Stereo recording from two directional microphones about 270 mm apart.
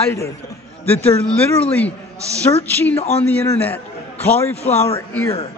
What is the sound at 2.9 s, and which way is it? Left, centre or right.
Speech, left.